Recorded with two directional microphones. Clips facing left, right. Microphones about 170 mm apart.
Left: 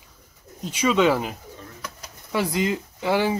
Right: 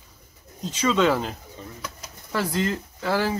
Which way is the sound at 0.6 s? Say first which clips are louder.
Left 1 dB; 15° left (ahead or behind).